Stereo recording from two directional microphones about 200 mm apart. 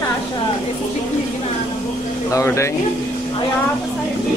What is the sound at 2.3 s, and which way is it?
Speech, 15° left (ahead or behind).